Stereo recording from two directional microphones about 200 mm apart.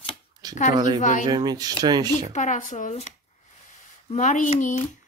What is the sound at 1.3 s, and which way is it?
Speech, 20° right (ahead or behind).